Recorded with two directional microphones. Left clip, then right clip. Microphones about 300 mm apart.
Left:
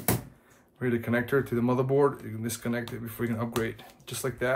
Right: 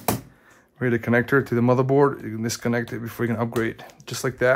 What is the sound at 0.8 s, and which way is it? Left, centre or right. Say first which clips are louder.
Speech: right 7 dB; right.